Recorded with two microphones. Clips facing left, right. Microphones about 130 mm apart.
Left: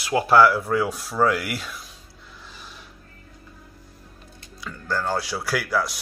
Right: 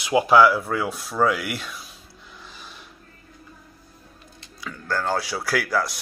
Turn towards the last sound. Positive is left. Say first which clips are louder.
# right 1 dB
turn(degrees=0)  # may be behind; listen again after turning